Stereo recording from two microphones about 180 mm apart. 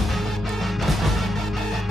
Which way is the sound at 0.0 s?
Centre (ahead or behind).